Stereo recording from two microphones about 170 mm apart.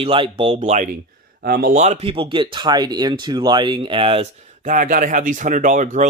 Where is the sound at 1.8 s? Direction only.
40° right (ahead or behind).